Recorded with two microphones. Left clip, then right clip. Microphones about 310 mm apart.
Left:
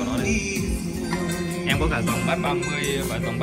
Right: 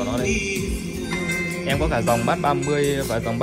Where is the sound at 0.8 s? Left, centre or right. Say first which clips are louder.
Right 1 dB; centre.